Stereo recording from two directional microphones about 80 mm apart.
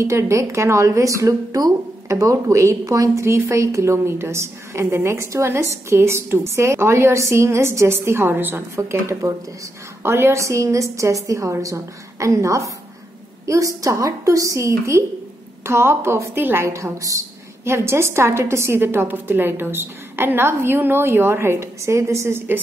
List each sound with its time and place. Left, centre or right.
0.0 s speech: right
8.7 s speech: right
16.6 s speech: right